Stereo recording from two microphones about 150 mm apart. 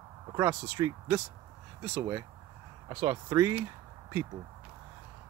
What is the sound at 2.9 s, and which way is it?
Speech, 25° right (ahead or behind).